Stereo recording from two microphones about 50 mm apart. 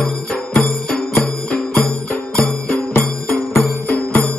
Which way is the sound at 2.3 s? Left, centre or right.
Left.